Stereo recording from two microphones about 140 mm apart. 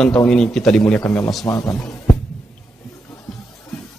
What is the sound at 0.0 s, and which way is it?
A man's voice, 5° left (ahead or behind).